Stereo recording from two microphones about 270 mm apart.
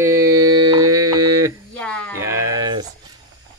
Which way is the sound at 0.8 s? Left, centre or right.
Right.